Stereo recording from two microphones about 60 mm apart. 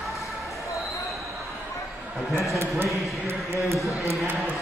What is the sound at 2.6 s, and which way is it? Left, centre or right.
Speech, right.